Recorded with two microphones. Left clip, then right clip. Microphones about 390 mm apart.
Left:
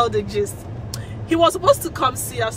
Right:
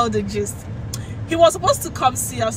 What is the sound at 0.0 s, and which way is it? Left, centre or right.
Speech, centre.